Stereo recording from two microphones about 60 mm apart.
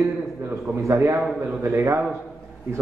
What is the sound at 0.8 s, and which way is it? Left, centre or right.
A man's voice, right.